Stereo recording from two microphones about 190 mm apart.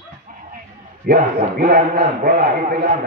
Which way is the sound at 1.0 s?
50° right (ahead or behind).